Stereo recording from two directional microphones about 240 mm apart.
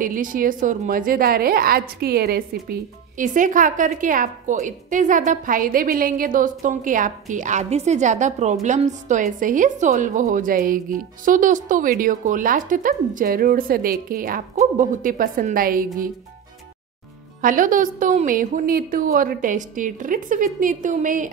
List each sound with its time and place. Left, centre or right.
0.0 s a woman's voice: right
17.4 s a woman's voice: right